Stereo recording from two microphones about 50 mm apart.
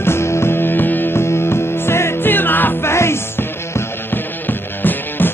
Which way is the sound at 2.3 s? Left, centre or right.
Left.